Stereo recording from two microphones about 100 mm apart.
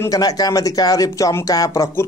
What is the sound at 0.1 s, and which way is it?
Speech, 40° left (ahead or behind).